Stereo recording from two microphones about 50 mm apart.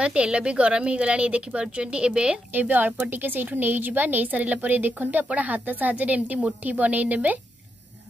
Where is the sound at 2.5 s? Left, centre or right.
Right.